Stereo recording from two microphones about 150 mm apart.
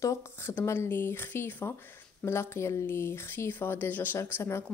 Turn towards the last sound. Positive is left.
turn(degrees=15)  # may be behind; listen again after turning